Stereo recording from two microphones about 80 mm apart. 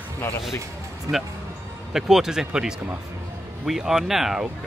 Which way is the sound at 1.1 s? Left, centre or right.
Right.